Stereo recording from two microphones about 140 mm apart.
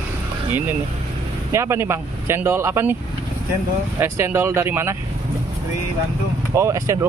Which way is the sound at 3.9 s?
20° right (ahead or behind).